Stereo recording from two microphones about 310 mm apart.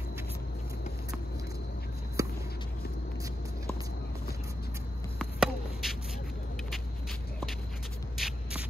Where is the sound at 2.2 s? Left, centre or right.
Centre.